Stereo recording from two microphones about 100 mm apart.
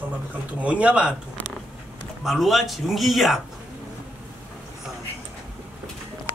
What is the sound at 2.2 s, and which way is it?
A man's voice, centre (ahead or behind).